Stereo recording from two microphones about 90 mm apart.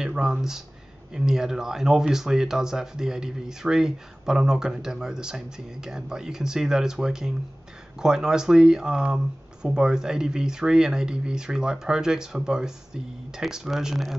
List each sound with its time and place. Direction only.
0.0 s speech: 5° right (ahead or behind)